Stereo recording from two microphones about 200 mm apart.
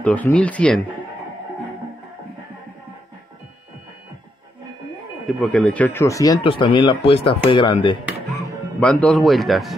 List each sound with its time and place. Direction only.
0.0 s speech: 5° left (ahead or behind)
5.2 s speech: 5° left (ahead or behind); by 8.0 s 25° left (ahead or behind)
8.7 s speech: 5° left (ahead or behind)